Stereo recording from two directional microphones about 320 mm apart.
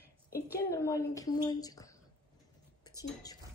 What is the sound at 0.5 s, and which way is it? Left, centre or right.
A woman's voice, centre.